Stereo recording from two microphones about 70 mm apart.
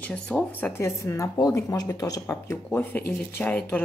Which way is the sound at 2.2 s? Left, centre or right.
Left.